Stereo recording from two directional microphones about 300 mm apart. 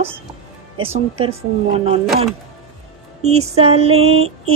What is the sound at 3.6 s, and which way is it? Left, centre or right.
Speech, centre.